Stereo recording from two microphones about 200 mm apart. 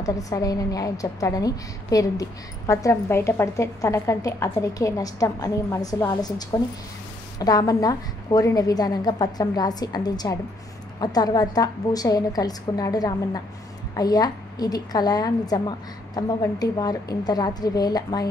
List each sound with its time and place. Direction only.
0.0 s a woman's voice: 15° left (ahead or behind)